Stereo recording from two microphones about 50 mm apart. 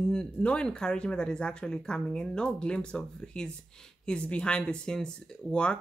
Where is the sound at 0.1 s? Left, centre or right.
Left.